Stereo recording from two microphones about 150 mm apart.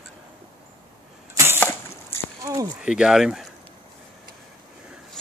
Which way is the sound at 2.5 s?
25° right (ahead or behind).